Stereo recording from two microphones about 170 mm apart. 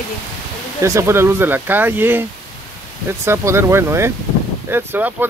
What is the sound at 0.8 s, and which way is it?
Speech, 15° right (ahead or behind).